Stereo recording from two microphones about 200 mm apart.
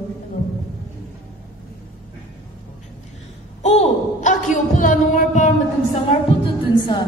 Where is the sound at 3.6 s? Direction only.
35° left (ahead or behind).